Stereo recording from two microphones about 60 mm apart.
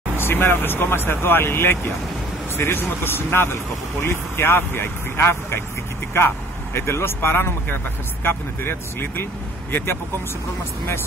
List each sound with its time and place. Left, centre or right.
0.3 s speech: left